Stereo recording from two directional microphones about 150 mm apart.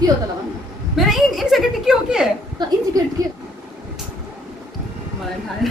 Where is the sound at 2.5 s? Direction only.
25° right (ahead or behind).